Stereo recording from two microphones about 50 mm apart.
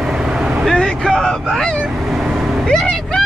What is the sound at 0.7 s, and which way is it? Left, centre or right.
Speech, centre.